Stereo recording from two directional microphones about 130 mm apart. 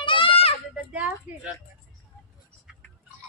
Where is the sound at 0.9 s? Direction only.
10° right (ahead or behind).